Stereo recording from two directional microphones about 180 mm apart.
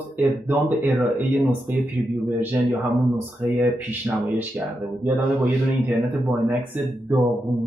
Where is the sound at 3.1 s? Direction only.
10° right (ahead or behind).